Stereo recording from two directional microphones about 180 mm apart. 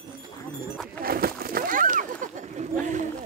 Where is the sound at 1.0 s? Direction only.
55° right (ahead or behind).